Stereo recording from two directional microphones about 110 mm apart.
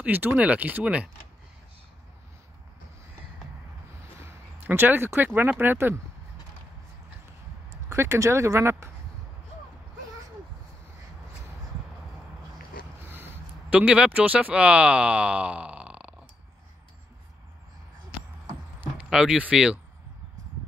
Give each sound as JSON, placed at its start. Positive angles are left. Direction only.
{"t": 0.0, "sound": "speech", "side_deg": -15}
{"t": 4.6, "sound": "speech", "side_deg": -15}
{"t": 7.9, "sound": "speech", "side_deg": -25}
{"t": 13.1, "sound": "speech", "side_deg": -15}
{"t": 19.0, "sound": "speech", "side_deg": -5}